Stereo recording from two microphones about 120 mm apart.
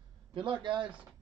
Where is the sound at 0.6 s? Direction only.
45° right (ahead or behind).